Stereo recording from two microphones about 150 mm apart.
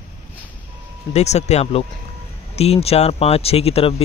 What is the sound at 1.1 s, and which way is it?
Speech, 45° left (ahead or behind).